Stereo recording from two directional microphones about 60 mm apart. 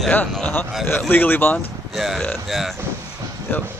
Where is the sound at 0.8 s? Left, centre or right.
Left.